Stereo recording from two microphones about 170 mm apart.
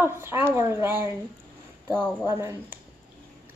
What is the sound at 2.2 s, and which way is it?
Speech, 20° right (ahead or behind).